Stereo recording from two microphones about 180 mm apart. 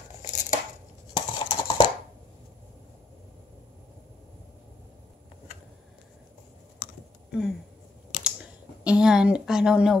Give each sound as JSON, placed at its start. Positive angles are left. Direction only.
{"t": 0.2, "sound": "tearing", "side_deg": 45}
{"t": 1.1, "sound": "clip-clop", "side_deg": 25}
{"t": 7.2, "sound": "a sound", "side_deg": 0}
{"t": 8.8, "sound": "a woman's voice", "side_deg": -5}